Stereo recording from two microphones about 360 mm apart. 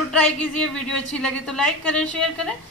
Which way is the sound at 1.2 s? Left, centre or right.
Centre.